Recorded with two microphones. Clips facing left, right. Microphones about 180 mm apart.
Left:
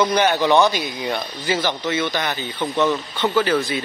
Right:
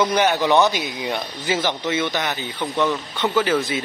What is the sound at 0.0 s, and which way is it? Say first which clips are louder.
Speech: left 1 dB; 5° right (ahead or behind).